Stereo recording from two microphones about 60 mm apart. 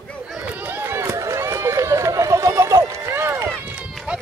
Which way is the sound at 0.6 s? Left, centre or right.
Right.